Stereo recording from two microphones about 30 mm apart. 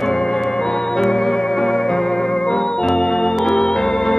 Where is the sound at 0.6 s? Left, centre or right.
Centre.